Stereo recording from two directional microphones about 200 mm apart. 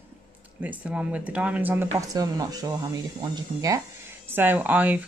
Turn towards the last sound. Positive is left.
turn(degrees=-10)  # may be behind; listen again after turning